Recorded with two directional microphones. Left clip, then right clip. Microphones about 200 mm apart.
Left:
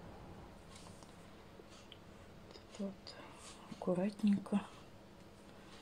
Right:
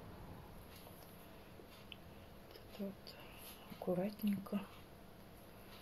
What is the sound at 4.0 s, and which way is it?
Speech, 30° left (ahead or behind).